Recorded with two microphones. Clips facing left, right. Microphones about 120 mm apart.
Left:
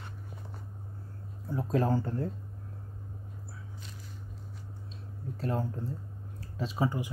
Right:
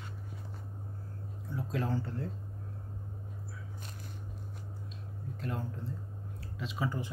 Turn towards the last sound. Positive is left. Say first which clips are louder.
# left 5 dB
turn(degrees=35)  # may be behind; listen again after turning